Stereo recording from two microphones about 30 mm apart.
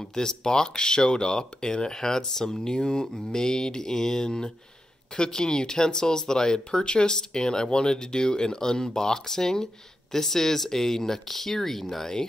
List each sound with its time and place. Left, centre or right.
0.1 s speech: left
6.8 s speech: left
7.2 s speech: left; by 12.1 s centre